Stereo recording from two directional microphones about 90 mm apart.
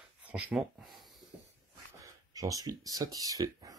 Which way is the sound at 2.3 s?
40° right (ahead or behind).